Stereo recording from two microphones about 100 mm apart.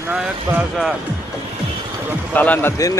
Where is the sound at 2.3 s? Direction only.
15° left (ahead or behind).